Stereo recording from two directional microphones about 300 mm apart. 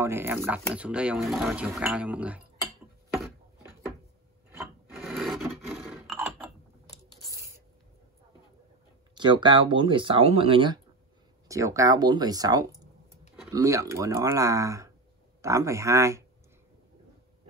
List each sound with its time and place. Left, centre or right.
0.0 s speech: centre
4.5 s filing: centre
7.3 s writing: centre
9.1 s speech: centre